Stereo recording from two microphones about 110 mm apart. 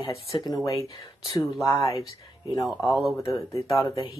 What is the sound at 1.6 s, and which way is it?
Speech, 30° left (ahead or behind).